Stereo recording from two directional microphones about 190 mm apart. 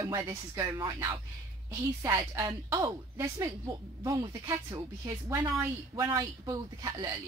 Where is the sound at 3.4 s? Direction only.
25° right (ahead or behind).